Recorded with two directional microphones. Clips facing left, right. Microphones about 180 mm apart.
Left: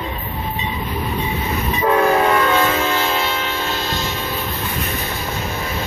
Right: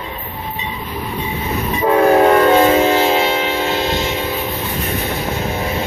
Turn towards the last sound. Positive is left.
turn(degrees=-20)  # may be behind; listen again after turning